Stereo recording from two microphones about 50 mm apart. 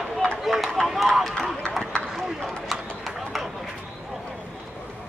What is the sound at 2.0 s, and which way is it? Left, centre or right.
Run, right.